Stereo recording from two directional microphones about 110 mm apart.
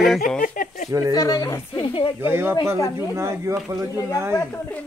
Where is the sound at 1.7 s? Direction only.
50° left (ahead or behind).